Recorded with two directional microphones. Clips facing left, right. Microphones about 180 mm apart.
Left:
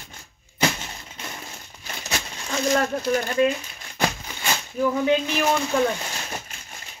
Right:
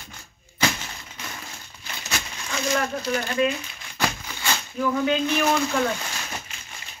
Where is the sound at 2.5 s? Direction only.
35° left (ahead or behind).